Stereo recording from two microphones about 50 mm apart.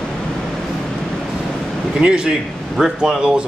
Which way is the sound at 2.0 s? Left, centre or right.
Centre.